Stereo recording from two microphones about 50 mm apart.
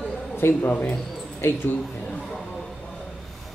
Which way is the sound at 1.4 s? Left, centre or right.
Left.